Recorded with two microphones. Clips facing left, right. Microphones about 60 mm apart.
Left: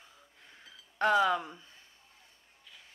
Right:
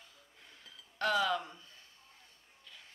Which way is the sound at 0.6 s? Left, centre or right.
Left.